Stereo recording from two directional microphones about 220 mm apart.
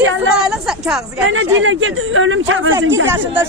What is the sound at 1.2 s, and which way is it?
Speech, 60° right (ahead or behind).